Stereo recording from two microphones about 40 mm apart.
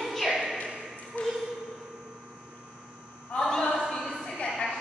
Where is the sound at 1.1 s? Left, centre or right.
Left.